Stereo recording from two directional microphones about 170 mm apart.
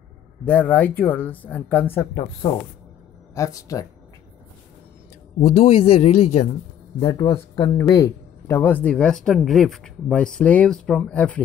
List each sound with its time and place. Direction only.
0.5 s speech: 10° left (ahead or behind)
5.4 s a man's voice: 35° left (ahead or behind)
7.0 s speech: 25° left (ahead or behind); by 11.4 s 10° left (ahead or behind)